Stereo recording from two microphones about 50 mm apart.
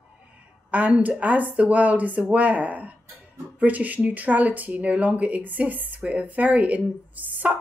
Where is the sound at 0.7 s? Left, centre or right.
Right.